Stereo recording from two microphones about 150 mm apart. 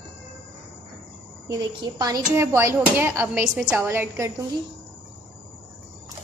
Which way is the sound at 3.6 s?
5° right (ahead or behind).